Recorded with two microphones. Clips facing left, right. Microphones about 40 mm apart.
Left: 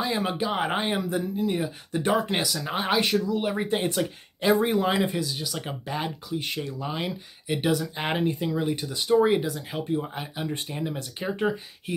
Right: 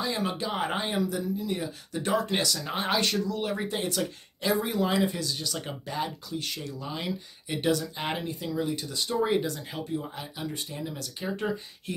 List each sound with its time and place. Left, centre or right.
0.0 s a sound: centre
0.4 s speech: centre
0.8 s speech: left
3.6 s speech: left
5.1 s speech: centre; by 8.8 s left
8.8 s speech: centre
9.4 s speech: centre
9.9 s speech: left